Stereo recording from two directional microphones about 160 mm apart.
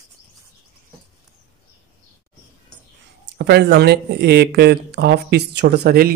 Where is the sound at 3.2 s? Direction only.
90° right.